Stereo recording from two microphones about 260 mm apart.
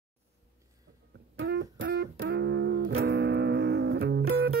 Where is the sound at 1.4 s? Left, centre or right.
Right.